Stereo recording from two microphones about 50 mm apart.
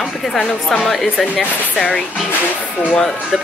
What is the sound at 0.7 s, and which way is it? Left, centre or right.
Speech, centre.